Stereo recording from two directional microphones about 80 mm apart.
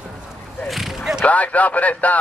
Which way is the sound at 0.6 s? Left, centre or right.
Centre.